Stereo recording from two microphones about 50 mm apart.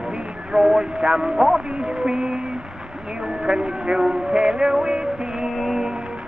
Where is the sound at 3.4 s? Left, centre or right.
Centre.